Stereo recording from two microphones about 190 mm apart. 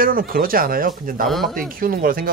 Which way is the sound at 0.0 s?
50° right (ahead or behind).